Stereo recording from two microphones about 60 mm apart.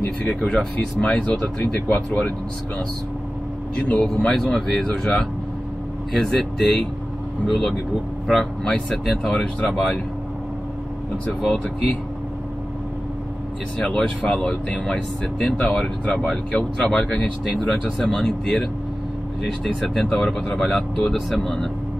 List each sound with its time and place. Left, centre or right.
0.3 s speech: centre
3.9 s speech: centre
13.7 s speech: centre
14.7 s speech: centre